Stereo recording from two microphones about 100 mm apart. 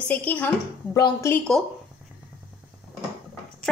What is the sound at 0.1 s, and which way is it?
Speech, 15° left (ahead or behind).